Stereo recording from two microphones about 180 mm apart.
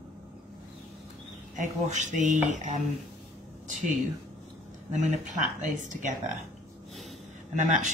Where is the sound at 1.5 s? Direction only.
45° right (ahead or behind).